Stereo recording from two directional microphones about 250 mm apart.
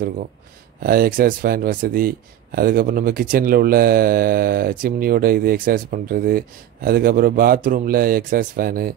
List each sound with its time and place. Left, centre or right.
0.8 s speech: right